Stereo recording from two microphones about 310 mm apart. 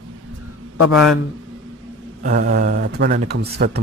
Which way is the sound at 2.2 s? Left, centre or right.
Right.